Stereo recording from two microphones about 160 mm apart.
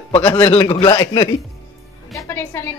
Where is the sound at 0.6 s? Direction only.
30° left (ahead or behind).